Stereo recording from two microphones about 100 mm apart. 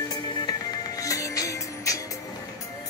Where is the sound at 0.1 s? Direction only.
45° left (ahead or behind).